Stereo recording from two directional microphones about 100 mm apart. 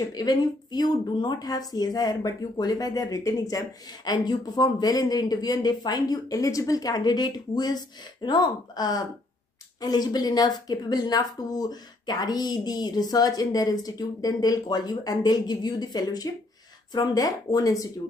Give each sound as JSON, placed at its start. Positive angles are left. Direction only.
{"t": 0.1, "sound": "speech", "side_deg": 45}